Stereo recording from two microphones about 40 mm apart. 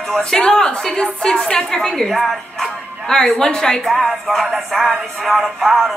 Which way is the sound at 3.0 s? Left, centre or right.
Centre.